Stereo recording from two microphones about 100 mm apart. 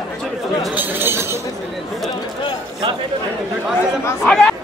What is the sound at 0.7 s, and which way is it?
Speech, 20° right (ahead or behind).